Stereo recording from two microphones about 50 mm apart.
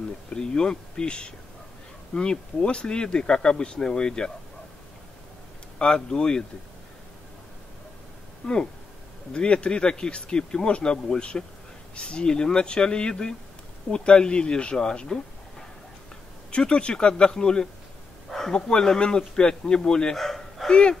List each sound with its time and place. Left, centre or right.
0.3 s speech: centre
5.8 s speech: centre
8.4 s speech: centre
16.5 s speech: left
20.2 s bow-wow: centre